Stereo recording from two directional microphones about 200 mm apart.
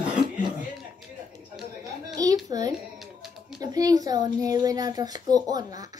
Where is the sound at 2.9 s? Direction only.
Centre (ahead or behind).